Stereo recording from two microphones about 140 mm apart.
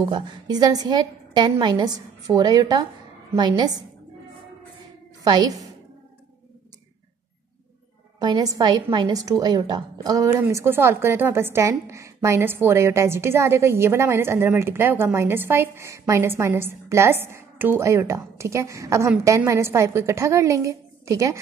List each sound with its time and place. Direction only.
0.0 s a woman's voice: 30° right (ahead or behind)
5.2 s a woman's voice: 30° right (ahead or behind)
8.2 s a woman's voice: 30° right (ahead or behind)